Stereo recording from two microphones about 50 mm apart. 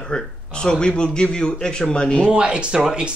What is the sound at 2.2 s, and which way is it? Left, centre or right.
Speech, right.